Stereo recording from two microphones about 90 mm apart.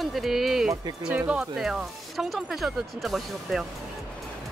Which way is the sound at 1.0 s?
15° right (ahead or behind).